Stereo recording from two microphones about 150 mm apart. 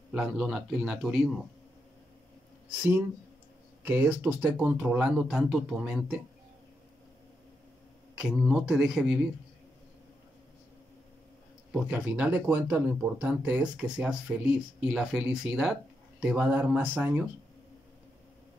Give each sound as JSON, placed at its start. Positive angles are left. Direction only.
{"t": 0.1, "sound": "a man's voice", "side_deg": -5}
{"t": 3.8, "sound": "speech", "side_deg": -10}
{"t": 8.2, "sound": "a man's voice", "side_deg": -5}
{"t": 11.7, "sound": "speech", "side_deg": -10}